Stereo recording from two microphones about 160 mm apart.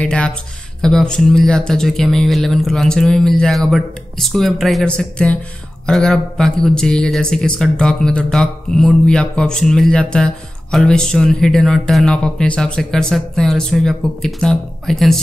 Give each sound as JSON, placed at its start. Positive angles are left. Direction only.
{"t": 0.0, "sound": "speech", "side_deg": 5}